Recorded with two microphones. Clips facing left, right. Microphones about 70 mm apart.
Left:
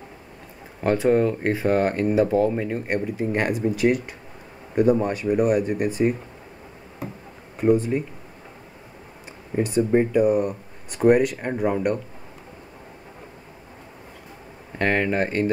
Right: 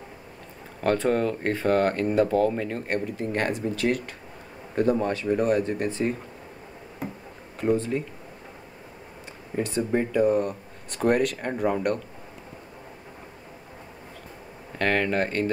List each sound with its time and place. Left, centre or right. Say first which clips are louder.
0.7 s speech: left 4 dB; centre
7.6 s speech: left 5 dB; centre
9.6 s speech: left 5 dB; centre
14.8 s speech: left 2 dB; centre